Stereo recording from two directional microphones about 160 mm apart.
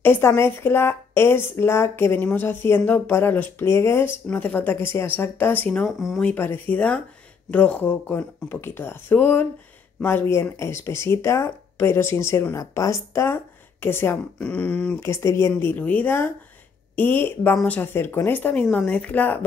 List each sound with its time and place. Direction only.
0.0 s a woman's voice: 10° left (ahead or behind)
6.3 s a woman's voice: 15° left (ahead or behind)